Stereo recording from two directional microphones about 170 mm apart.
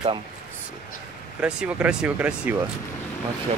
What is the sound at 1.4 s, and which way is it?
Speech, 5° right (ahead or behind).